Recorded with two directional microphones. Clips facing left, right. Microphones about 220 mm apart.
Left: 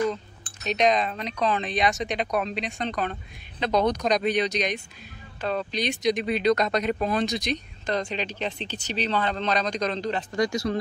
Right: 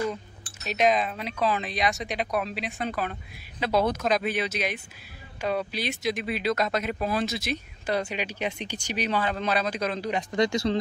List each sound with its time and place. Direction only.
0.7 s speech: 5° right (ahead or behind)
10.3 s speech: 25° right (ahead or behind)